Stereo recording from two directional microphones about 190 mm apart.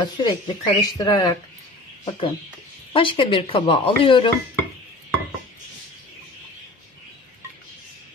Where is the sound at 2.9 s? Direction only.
25° left (ahead or behind).